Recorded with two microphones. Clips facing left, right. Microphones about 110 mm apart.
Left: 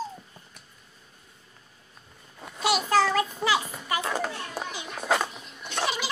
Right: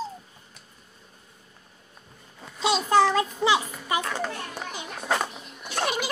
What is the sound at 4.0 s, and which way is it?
Children playing, 10° left (ahead or behind).